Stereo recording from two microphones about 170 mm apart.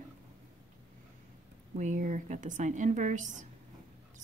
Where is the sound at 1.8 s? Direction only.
50° right (ahead or behind).